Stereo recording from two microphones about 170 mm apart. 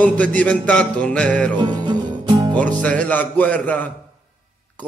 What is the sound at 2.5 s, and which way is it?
Music, 10° left (ahead or behind).